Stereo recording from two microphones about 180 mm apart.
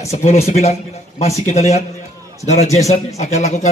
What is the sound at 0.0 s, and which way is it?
Speech, 35° left (ahead or behind).